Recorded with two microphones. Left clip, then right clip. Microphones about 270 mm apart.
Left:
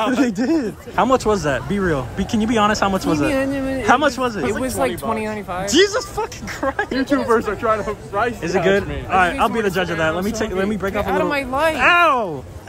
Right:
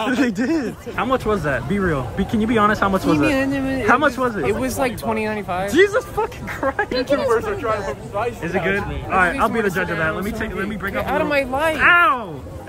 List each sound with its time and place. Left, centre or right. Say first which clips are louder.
0.1 s speech: left 1 dB; centre
7.2 s speech: left 2 dB; left
8.5 s a man's voice: left 4 dB; centre